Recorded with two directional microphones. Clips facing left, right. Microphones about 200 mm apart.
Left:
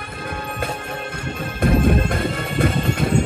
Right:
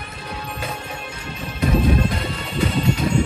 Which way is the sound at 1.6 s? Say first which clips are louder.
Left 1 dB; 50° left (ahead or behind).